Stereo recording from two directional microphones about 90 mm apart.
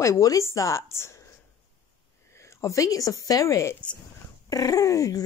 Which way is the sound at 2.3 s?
35° left (ahead or behind).